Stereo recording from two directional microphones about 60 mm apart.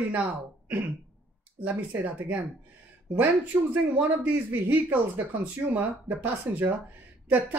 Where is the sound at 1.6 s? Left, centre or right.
Right.